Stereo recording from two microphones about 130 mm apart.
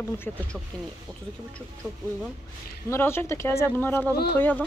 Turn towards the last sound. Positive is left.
turn(degrees=15)  # may be behind; listen again after turning